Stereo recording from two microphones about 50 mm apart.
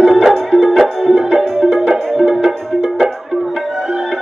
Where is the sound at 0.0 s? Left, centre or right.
Centre.